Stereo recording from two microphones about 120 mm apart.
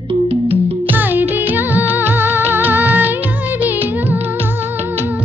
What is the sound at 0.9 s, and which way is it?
Music, 15° right (ahead or behind).